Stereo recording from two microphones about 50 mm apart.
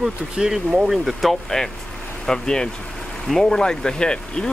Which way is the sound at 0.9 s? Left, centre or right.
Centre.